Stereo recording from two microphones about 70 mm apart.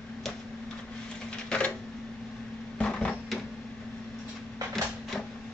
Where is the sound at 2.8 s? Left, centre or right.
Centre.